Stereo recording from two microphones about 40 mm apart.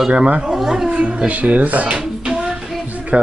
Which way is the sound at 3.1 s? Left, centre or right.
Right.